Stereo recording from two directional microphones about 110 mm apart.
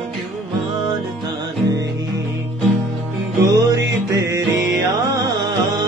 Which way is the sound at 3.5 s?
30° right (ahead or behind).